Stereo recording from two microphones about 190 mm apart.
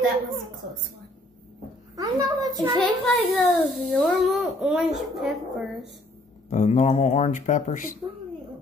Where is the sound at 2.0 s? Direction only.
20° right (ahead or behind).